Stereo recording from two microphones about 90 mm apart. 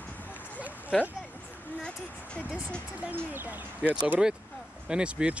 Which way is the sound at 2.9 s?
20° right (ahead or behind).